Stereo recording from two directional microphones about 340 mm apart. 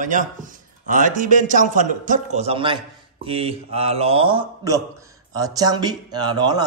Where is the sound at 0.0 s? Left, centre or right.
Right.